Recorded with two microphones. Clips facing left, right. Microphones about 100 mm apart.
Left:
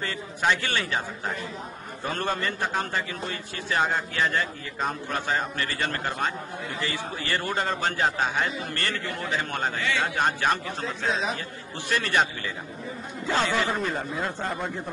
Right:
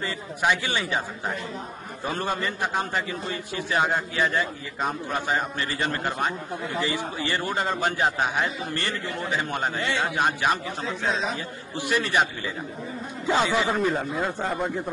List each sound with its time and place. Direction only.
0.0 s a man's voice: 15° right (ahead or behind)
11.7 s a man's voice: 15° right (ahead or behind)
13.3 s a man's voice: 15° right (ahead or behind)